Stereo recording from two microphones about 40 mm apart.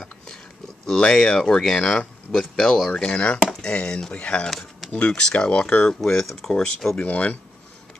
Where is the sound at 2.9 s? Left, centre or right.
Left.